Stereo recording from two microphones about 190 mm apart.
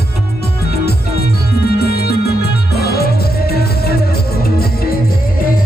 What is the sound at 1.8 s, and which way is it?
Music, 55° left (ahead or behind).